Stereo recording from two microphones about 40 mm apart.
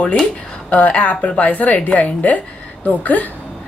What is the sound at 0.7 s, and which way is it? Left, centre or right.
A woman's voice, left.